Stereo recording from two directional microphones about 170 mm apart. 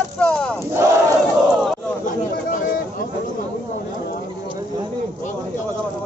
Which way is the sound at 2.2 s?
55° left (ahead or behind).